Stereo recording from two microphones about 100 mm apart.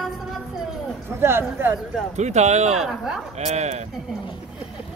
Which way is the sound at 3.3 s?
90° right.